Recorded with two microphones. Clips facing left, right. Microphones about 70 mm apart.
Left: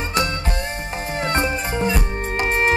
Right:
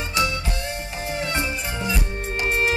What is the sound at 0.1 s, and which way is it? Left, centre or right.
Music, left.